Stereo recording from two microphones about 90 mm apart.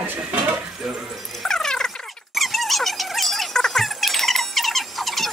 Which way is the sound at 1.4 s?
5° left (ahead or behind).